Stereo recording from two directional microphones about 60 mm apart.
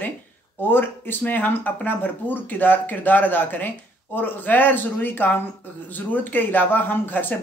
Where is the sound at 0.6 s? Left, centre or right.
Left.